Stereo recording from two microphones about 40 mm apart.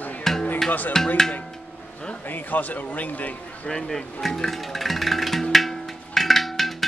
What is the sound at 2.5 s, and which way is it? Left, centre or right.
Speech, left.